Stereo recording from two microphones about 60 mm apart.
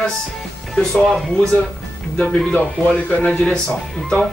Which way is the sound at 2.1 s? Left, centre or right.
Left.